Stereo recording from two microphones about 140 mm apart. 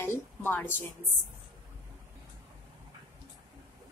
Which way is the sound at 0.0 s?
15° left (ahead or behind).